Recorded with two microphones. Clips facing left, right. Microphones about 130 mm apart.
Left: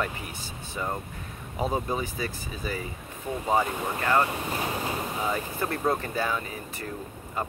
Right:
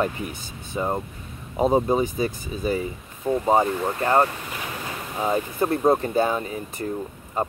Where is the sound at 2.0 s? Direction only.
20° right (ahead or behind).